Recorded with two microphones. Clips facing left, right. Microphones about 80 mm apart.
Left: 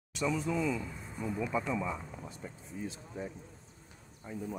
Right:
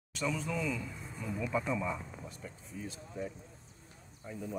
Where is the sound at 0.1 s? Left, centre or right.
Centre.